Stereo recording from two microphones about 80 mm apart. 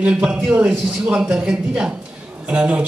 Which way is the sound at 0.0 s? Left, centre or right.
Centre.